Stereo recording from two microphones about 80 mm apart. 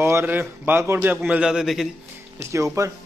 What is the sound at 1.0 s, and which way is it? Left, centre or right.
Speech, centre.